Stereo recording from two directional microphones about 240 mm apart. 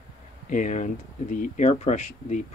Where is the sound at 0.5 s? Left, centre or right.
Left.